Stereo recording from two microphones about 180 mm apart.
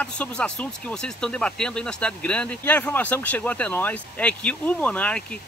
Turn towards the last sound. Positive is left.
turn(degrees=5)  # may be behind; listen again after turning